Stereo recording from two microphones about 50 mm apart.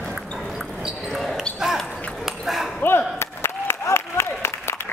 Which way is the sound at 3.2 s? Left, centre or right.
Left.